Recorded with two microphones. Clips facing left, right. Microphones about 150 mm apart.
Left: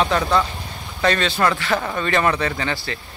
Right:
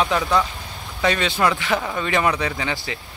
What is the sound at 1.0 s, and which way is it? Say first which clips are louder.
Speech: left 1 dB; 15° right (ahead or behind).